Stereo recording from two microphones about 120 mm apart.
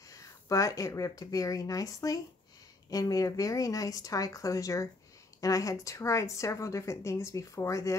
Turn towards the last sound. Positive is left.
turn(degrees=25)  # may be behind; listen again after turning